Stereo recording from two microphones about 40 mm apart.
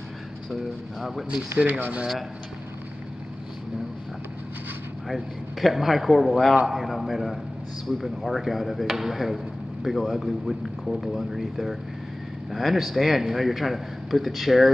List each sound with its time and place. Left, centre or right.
1.7 s speech: right
5.0 s a man's voice: centre